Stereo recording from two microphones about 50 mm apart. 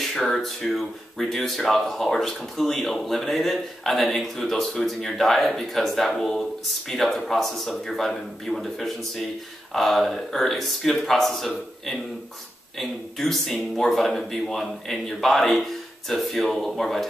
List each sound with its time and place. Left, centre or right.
0.0 s speech: centre